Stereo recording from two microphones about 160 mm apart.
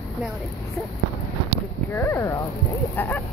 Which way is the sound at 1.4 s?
15° left (ahead or behind).